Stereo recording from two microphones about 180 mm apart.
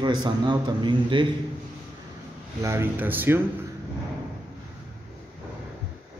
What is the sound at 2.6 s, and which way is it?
Speech, 15° right (ahead or behind).